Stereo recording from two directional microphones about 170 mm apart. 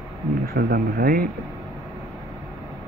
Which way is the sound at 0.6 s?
60° right (ahead or behind).